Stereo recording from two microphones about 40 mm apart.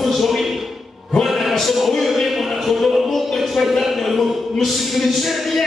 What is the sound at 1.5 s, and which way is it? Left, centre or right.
Music, centre.